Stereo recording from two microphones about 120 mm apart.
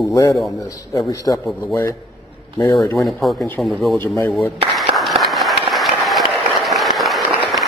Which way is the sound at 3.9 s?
25° left (ahead or behind).